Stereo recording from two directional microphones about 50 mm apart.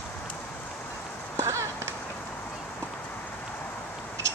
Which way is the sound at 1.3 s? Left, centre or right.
Right.